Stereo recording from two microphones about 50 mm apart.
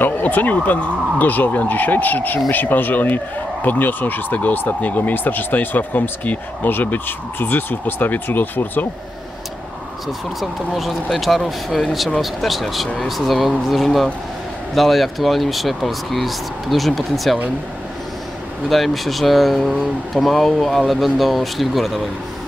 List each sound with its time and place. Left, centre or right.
0.0 s speech: left
10.0 s speech: centre
18.7 s speech: centre